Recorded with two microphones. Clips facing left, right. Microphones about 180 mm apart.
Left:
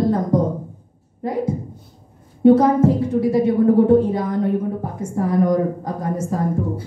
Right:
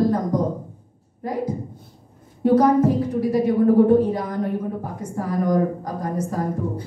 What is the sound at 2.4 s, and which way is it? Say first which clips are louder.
A woman's voice: left 3 dB; 25° left (ahead or behind).